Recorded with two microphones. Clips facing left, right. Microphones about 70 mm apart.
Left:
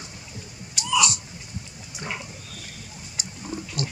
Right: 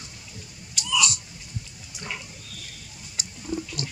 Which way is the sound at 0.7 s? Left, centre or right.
Left.